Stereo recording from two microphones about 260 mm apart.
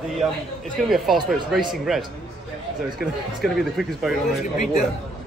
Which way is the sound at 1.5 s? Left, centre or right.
Centre.